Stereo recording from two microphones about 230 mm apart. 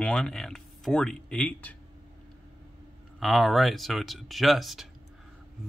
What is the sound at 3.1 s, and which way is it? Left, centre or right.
A man's voice, centre.